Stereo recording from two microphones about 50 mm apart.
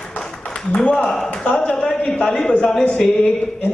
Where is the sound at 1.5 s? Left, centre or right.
Left.